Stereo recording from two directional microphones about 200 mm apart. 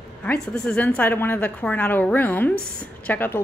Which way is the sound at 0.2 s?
5° left (ahead or behind).